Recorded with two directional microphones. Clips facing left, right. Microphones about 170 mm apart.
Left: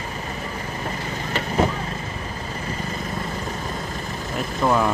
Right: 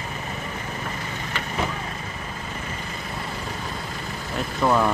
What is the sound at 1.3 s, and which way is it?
Vehicle, 35° left (ahead or behind).